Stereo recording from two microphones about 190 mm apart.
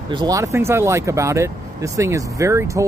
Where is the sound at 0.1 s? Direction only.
20° right (ahead or behind).